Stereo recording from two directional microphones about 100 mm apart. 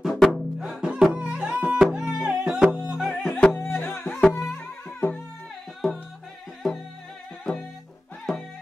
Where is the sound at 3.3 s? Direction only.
15° left (ahead or behind).